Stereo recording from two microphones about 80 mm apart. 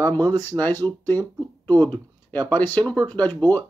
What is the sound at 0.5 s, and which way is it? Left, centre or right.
Speech, right.